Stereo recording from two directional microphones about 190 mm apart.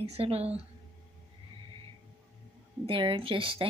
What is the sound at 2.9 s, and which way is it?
Speech, 25° right (ahead or behind).